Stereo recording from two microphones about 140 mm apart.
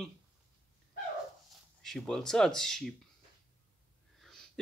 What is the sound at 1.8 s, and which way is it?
Speech, centre (ahead or behind).